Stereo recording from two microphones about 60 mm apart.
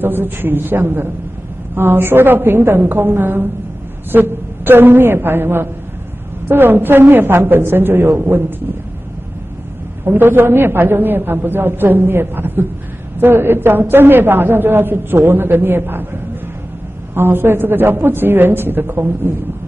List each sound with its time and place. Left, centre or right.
0.0 s a woman's voice: right
10.0 s a woman's voice: right
17.1 s a woman's voice: right